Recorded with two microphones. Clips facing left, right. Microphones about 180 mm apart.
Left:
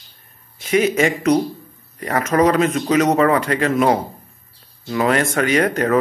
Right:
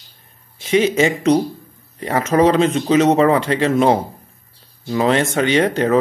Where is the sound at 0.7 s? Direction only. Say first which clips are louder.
Right 1 dB; 25° right (ahead or behind).